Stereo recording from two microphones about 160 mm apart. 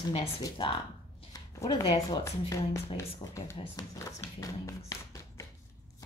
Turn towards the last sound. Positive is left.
turn(degrees=20)  # may be behind; listen again after turning